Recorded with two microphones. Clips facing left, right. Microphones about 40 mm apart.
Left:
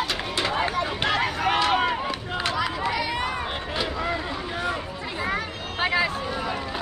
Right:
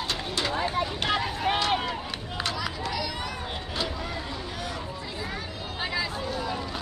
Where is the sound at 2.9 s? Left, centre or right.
Left.